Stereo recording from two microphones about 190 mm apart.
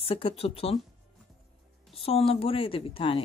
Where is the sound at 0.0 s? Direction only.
30° left (ahead or behind).